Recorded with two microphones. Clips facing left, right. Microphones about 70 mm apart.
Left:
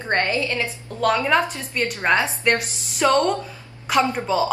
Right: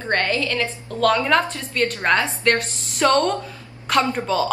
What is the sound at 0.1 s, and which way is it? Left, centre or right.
A woman's voice, left.